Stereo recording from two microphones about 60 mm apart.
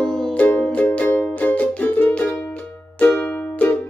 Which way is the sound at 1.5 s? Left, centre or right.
Left.